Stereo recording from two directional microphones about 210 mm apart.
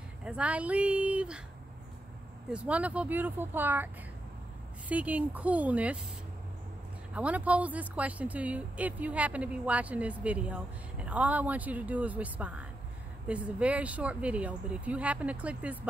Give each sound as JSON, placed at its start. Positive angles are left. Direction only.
{"t": 0.2, "sound": "speech", "side_deg": -5}
{"t": 2.5, "sound": "speech", "side_deg": -5}
{"t": 7.2, "sound": "speech", "side_deg": -5}